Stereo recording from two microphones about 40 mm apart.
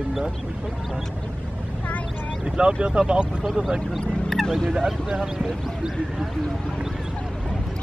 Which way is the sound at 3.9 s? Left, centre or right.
Centre.